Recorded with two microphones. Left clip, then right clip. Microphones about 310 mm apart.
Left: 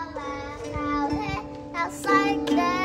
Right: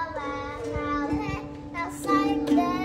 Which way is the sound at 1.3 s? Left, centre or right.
Left.